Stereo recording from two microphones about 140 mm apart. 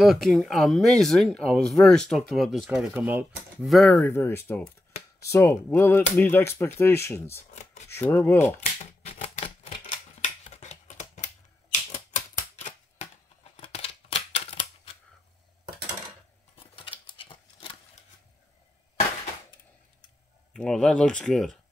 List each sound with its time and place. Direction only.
0.0 s speech: centre (ahead or behind)
3.7 s speech: centre (ahead or behind)
4.0 s speech: 15° left (ahead or behind)
8.5 s typewriter: 50° left (ahead or behind)
10.2 s a sound: 60° left (ahead or behind)
12.5 s a sound: 55° left (ahead or behind)
16.5 s scissors: 40° left (ahead or behind)
17.0 s typewriter: 35° left (ahead or behind)
20.5 s speech: 5° left (ahead or behind)